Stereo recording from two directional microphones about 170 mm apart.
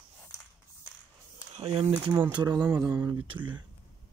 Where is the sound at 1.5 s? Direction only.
35° right (ahead or behind).